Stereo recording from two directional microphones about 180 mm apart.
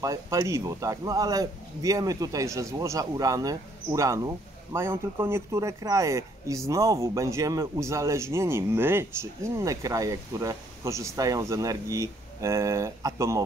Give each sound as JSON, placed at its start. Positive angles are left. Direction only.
{"t": 0.0, "sound": "a man's voice", "side_deg": -20}